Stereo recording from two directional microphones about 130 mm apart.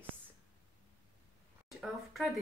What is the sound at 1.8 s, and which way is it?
Speech, centre (ahead or behind).